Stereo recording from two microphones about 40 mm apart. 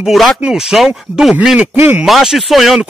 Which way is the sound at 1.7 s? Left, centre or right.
Right.